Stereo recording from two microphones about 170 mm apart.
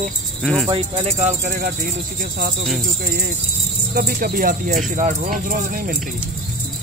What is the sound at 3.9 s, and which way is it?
Speech, 60° right (ahead or behind).